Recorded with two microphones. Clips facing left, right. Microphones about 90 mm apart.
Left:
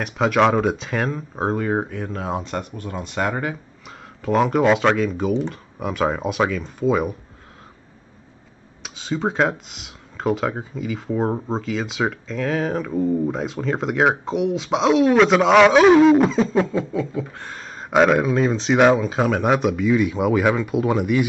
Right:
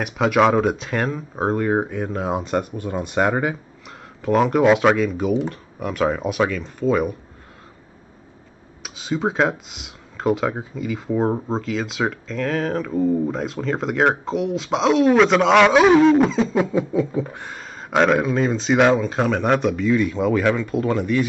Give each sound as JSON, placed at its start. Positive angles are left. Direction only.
{"t": 0.0, "sound": "speech", "side_deg": 0}
{"t": 4.2, "sound": "speech", "side_deg": 0}
{"t": 8.8, "sound": "speech", "side_deg": -5}
{"t": 16.7, "sound": "beatboxing", "side_deg": -15}
{"t": 17.5, "sound": "speech", "side_deg": 0}